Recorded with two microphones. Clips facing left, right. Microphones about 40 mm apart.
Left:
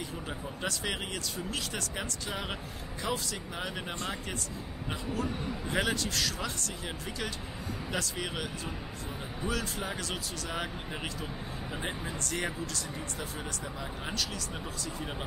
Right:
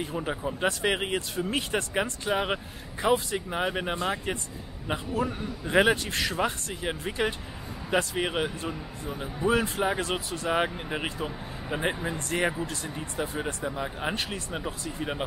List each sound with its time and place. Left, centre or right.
0.0 s speech: right